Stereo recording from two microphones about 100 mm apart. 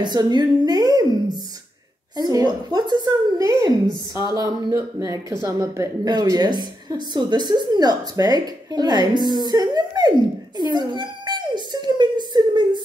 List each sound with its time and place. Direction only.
0.0 s a woman's voice: 45° right (ahead or behind); by 5.9 s 30° right (ahead or behind)
6.0 s a woman's voice: 45° right (ahead or behind)
10.6 s a sound: 50° right (ahead or behind)